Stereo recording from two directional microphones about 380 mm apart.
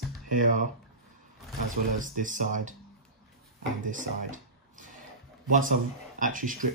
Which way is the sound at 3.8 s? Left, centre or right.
Centre.